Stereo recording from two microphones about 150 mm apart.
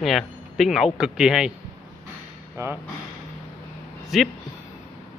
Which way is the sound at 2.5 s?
15° right (ahead or behind).